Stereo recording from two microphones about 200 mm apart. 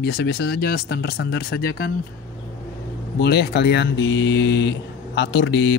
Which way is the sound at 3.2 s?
50° left (ahead or behind).